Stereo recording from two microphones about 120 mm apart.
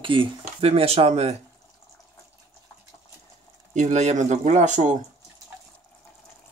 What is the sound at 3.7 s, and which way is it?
Speech, 75° right (ahead or behind).